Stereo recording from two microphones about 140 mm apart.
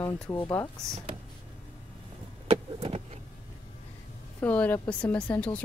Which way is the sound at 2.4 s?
45° right (ahead or behind).